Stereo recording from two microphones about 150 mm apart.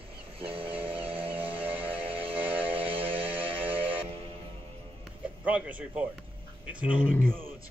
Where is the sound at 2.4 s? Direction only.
10° right (ahead or behind).